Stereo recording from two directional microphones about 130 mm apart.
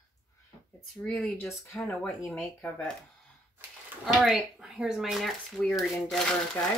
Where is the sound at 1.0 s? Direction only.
5° left (ahead or behind).